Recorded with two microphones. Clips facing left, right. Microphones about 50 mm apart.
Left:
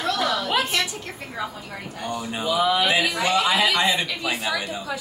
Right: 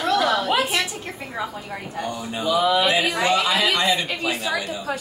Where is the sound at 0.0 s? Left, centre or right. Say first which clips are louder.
Right 4 dB; right.